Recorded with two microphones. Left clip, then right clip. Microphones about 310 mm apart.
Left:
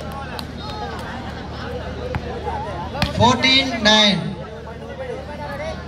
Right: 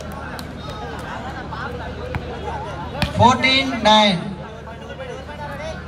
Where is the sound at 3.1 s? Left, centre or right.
Centre.